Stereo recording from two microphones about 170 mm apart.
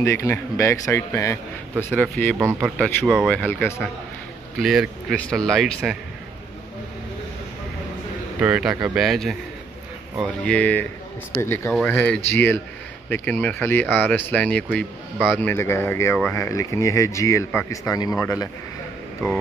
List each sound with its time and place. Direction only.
0.0 s speech: 15° left (ahead or behind)
2.3 s speech: 15° right (ahead or behind)
3.3 s speech: 10° left (ahead or behind)
4.6 s speech: centre (ahead or behind)
8.4 s speech: 5° right (ahead or behind)
10.4 s speech: 5° left (ahead or behind)